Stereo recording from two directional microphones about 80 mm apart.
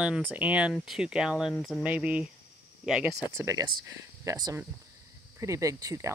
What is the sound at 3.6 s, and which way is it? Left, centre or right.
Speech, right.